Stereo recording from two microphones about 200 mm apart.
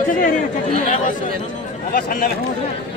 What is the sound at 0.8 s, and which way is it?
Speech, 40° left (ahead or behind).